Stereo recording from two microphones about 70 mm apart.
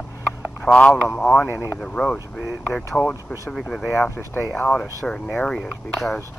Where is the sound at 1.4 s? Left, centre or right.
Left.